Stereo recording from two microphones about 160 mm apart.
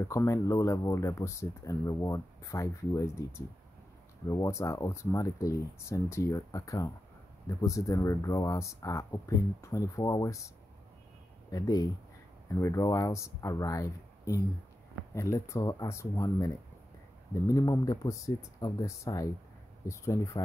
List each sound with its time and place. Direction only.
0.0 s speech: 20° left (ahead or behind)
11.5 s speech: 25° left (ahead or behind)